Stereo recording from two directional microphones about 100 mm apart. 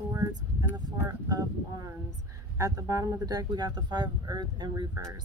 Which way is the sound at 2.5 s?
35° right (ahead or behind).